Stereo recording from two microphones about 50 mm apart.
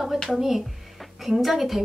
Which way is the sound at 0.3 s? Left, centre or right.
Centre.